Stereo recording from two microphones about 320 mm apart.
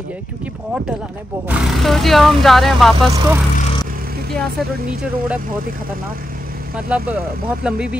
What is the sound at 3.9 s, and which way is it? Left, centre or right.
Vehicle, right.